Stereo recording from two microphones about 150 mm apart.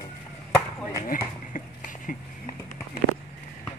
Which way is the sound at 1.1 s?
65° left (ahead or behind).